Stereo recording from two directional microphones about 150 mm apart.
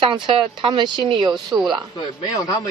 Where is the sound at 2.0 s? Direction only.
25° left (ahead or behind).